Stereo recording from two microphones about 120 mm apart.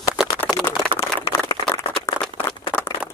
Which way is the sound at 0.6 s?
20° left (ahead or behind).